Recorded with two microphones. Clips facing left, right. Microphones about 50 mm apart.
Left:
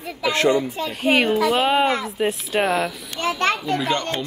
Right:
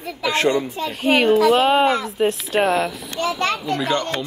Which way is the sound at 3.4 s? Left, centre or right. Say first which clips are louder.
Left 3 dB; left.